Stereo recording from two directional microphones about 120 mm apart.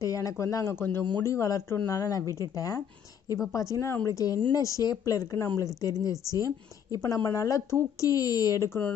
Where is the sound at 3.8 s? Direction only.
25° left (ahead or behind).